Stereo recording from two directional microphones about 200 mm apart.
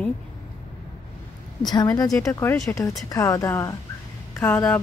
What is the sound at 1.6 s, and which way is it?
A woman's voice, 20° left (ahead or behind).